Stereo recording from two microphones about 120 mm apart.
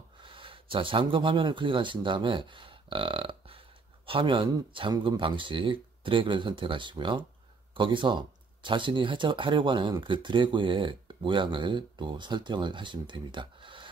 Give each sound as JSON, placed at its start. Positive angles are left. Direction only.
{"t": 0.2, "sound": "speech", "side_deg": -45}